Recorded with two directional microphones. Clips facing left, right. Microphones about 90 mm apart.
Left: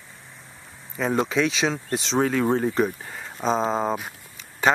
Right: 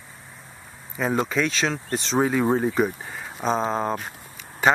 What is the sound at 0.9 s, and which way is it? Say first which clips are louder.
Speech: left 1 dB; centre (ahead or behind).